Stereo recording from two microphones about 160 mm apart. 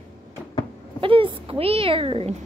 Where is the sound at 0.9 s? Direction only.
35° right (ahead or behind).